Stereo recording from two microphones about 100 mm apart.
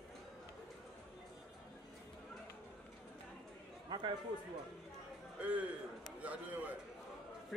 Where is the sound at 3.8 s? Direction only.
50° right (ahead or behind).